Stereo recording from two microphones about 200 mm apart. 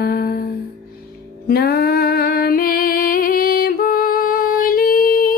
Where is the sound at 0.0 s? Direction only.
50° left (ahead or behind).